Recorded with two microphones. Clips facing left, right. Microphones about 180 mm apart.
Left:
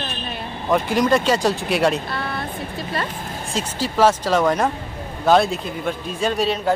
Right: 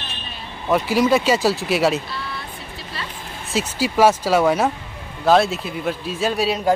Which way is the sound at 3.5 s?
10° right (ahead or behind).